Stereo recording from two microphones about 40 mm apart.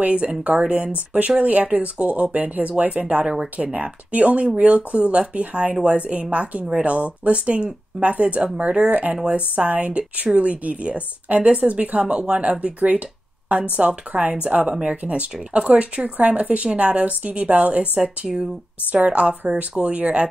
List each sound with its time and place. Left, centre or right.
0.0 s speech: right